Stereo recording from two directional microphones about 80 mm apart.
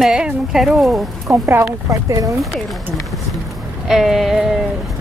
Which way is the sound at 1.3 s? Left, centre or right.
Right.